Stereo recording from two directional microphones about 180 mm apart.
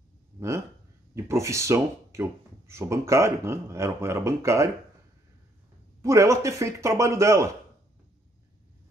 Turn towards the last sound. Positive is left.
turn(degrees=-15)  # may be behind; listen again after turning